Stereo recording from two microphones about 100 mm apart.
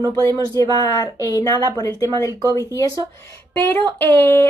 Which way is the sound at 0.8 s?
35° left (ahead or behind).